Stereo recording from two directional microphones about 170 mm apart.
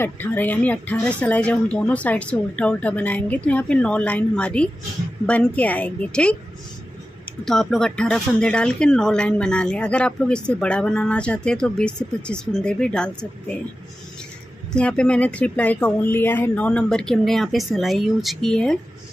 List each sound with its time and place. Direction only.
0.0 s speech: 10° left (ahead or behind)
7.4 s speech: centre (ahead or behind)
14.7 s speech: 5° left (ahead or behind)